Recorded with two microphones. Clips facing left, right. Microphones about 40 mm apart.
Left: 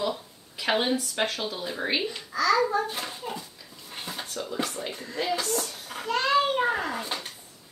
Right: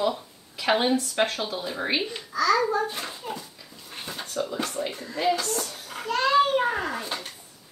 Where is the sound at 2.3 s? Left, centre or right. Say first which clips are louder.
Right 1 dB; centre.